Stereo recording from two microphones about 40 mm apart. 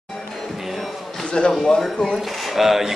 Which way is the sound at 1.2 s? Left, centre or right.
Left.